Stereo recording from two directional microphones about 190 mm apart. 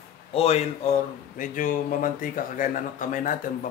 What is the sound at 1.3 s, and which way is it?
Speech, 45° left (ahead or behind).